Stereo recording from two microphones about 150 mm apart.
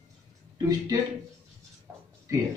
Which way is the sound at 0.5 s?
25° right (ahead or behind).